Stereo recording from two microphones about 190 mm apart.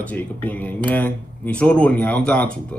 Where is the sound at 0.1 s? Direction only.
10° left (ahead or behind).